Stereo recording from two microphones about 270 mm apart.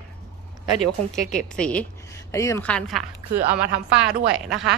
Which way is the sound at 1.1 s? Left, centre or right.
Centre.